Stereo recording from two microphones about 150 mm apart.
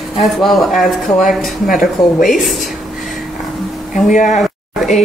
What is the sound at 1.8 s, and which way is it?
Speech, 65° left (ahead or behind).